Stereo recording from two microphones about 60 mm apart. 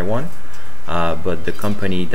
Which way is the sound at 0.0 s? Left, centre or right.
Centre.